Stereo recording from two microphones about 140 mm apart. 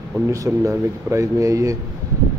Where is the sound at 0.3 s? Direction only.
20° right (ahead or behind).